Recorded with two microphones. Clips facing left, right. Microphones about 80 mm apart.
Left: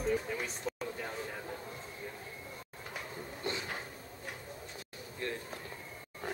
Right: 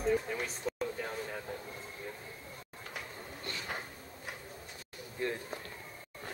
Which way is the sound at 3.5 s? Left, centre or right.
Left.